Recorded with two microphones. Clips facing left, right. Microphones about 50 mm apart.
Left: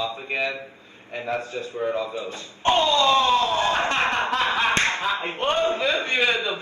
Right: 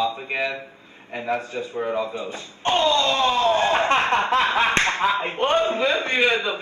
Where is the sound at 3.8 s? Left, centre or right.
Right.